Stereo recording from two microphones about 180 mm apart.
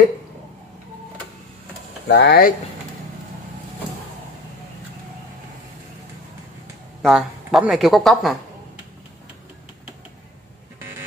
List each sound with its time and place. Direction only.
2.0 s speech: 65° left (ahead or behind)
7.0 s speech: centre (ahead or behind)